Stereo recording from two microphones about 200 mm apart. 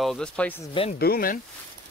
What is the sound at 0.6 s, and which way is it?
Speech, 25° left (ahead or behind).